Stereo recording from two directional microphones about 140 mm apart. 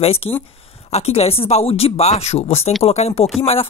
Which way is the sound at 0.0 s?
45° left (ahead or behind).